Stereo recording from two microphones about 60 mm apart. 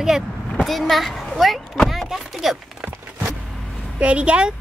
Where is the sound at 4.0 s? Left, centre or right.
Right.